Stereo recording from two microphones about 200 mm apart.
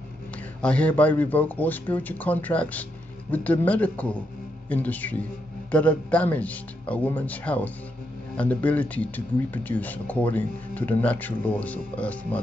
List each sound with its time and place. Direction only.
0.6 s speech: 5° left (ahead or behind)